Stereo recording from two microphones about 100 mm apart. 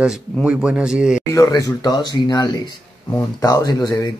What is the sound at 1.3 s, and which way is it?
Speech, 35° left (ahead or behind).